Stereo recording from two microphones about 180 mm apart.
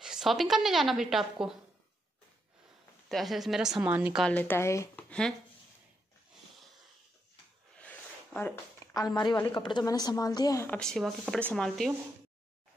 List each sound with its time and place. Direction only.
0.0 s a woman's voice: 5° right (ahead or behind)
3.1 s a woman's voice: centre (ahead or behind)
4.2 s speech: 10° left (ahead or behind)
7.8 s a woman's voice: 10° left (ahead or behind)
10.7 s a woman's voice: 5° left (ahead or behind)